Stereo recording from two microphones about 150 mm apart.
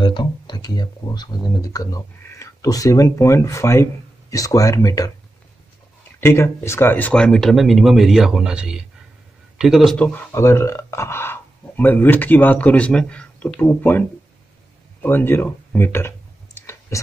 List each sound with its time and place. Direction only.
0.0 s speech: 30° left (ahead or behind)
6.2 s speech: 20° left (ahead or behind)
16.5 s clicking: 15° left (ahead or behind)